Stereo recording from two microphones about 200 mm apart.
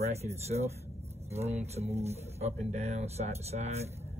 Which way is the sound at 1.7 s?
30° right (ahead or behind).